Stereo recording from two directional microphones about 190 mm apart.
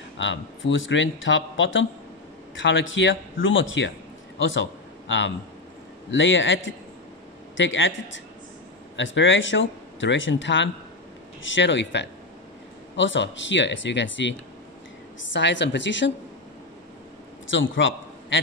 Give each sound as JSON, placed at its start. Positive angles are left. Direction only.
{"t": 0.2, "sound": "a man's voice", "side_deg": 75}
{"t": 15.3, "sound": "speech", "side_deg": 70}
{"t": 17.5, "sound": "a man's voice", "side_deg": 80}